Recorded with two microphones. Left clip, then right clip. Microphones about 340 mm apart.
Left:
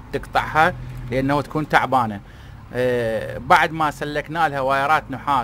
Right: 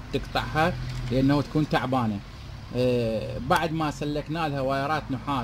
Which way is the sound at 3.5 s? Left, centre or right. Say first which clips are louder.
Left 9 dB; left.